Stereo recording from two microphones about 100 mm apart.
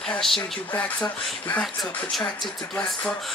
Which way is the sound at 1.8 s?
Centre (ahead or behind).